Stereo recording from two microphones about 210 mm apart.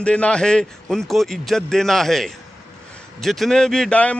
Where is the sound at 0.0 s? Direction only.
5° left (ahead or behind).